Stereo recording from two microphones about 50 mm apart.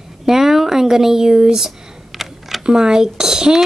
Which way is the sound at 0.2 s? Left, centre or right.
Centre.